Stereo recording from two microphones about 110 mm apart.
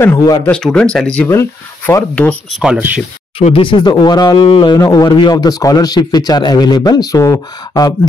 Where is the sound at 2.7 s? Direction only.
15° right (ahead or behind).